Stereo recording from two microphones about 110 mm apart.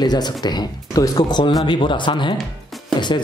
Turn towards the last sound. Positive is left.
turn(degrees=45)  # may be behind; listen again after turning